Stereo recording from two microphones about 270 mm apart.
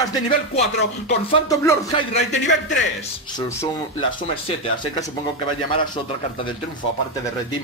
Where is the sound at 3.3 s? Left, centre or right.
Centre.